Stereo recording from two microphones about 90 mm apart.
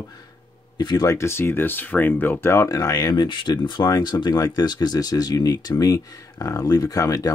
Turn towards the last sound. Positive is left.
turn(degrees=45)  # may be behind; listen again after turning